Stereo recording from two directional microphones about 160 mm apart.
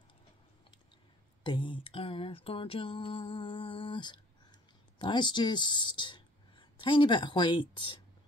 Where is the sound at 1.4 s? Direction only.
30° left (ahead or behind).